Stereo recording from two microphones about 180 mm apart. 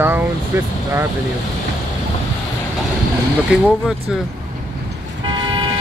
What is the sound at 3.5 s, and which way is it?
Speech, 5° right (ahead or behind).